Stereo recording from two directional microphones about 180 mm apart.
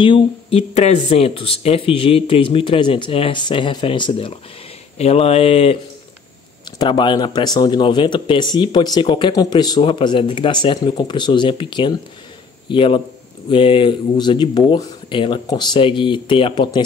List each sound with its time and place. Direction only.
0.0 s speech: 30° left (ahead or behind)
6.8 s speech: 25° left (ahead or behind)